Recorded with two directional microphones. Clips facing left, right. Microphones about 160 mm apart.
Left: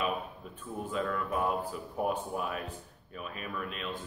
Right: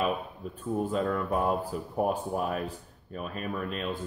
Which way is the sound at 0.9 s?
40° right (ahead or behind).